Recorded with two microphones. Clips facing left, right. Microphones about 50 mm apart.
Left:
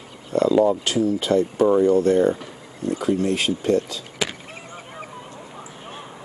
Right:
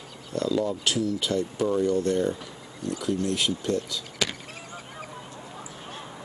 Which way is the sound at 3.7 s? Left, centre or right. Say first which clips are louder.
Left 5 dB; centre.